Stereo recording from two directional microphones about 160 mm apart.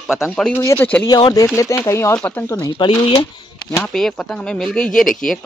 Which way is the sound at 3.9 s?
5° left (ahead or behind).